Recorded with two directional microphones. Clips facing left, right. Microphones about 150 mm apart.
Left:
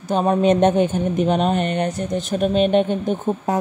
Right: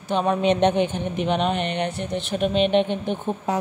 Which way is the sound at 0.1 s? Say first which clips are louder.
Left 4 dB; 40° left (ahead or behind).